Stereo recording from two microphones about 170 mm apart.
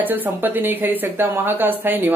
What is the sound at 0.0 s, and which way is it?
A woman's voice, 10° right (ahead or behind).